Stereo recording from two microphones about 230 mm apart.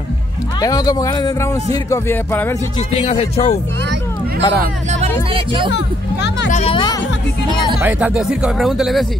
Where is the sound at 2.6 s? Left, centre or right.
Left.